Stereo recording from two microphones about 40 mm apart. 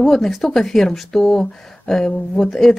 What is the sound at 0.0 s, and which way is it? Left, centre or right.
Speech, centre.